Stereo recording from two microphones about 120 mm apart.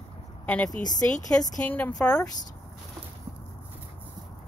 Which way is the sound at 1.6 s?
15° left (ahead or behind).